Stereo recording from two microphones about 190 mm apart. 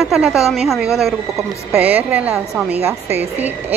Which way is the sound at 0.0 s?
Centre (ahead or behind).